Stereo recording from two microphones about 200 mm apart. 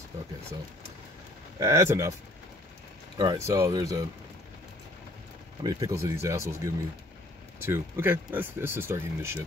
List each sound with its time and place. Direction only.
1.6 s speech: 15° right (ahead or behind)
3.2 s speech: 15° right (ahead or behind)
5.6 s speech: 20° right (ahead or behind)